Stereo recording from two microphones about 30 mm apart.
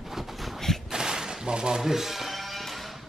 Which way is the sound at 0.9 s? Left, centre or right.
Right.